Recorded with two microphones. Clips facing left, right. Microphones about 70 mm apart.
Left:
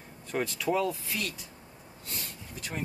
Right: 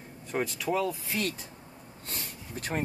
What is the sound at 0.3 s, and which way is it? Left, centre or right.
Speech, centre.